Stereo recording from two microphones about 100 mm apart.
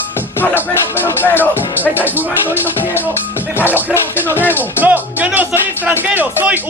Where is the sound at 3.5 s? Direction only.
20° left (ahead or behind).